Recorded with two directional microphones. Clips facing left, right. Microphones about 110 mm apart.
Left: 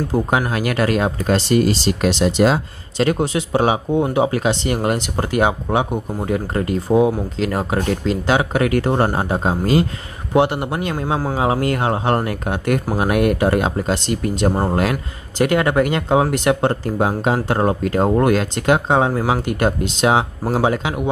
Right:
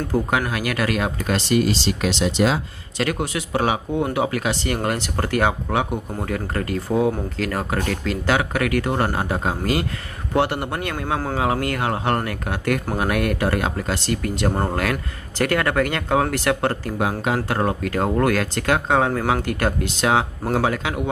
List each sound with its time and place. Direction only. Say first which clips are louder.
0.1 s speech: left 2 dB; 25° left (ahead or behind); by 2.6 s 45° left (ahead or behind)
3.0 s speech: left 6 dB; 30° left (ahead or behind)